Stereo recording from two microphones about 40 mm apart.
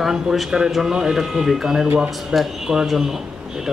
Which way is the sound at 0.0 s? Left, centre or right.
Centre.